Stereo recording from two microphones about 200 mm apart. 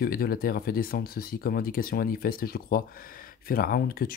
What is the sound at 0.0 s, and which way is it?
Speech, 50° left (ahead or behind).